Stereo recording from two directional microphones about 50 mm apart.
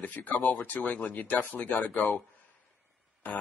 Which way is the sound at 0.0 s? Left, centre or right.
Left.